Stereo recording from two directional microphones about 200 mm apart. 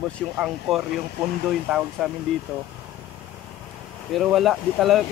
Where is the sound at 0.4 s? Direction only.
Centre (ahead or behind).